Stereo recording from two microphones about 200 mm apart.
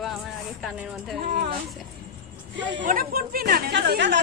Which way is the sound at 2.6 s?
65° right (ahead or behind).